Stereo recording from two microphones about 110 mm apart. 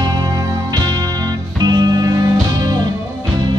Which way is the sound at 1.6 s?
40° right (ahead or behind).